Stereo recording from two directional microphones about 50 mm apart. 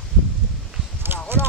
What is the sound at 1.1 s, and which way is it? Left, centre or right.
Clip-clop, right.